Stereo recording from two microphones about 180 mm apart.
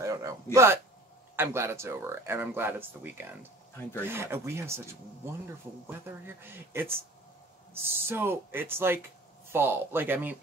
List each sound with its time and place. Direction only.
0.0 s speech: 20° right (ahead or behind)